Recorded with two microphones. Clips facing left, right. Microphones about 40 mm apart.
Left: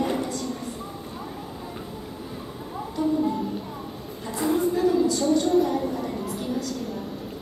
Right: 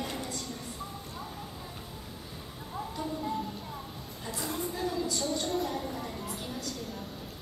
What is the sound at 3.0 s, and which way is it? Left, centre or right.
Music, centre.